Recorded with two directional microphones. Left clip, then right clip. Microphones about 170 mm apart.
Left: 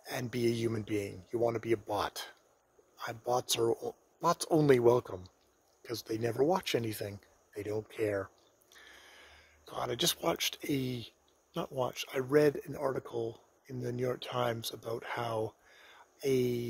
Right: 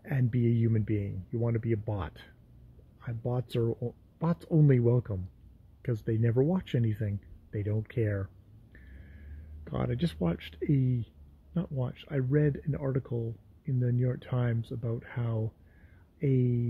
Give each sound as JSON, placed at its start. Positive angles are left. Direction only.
{"t": 0.0, "sound": "speech", "side_deg": 20}
{"t": 8.8, "sound": "gasp", "side_deg": 25}
{"t": 9.8, "sound": "speech", "side_deg": 25}